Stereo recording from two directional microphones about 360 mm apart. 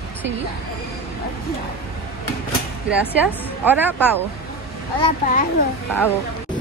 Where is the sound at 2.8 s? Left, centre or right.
Centre.